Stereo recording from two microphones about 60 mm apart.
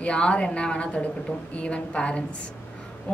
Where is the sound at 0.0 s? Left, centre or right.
Centre.